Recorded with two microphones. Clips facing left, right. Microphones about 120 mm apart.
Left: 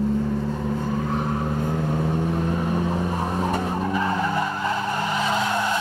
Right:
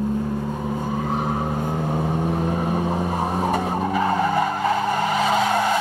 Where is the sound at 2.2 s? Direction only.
55° right (ahead or behind).